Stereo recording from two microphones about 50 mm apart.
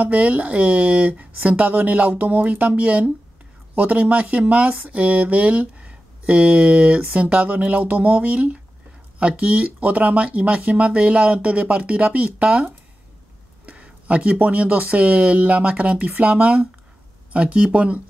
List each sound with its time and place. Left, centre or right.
0.0 s speech: right
4.7 s speech: right
13.7 s speech: right